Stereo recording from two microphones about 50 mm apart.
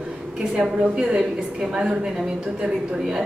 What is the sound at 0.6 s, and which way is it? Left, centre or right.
A woman's voice, centre.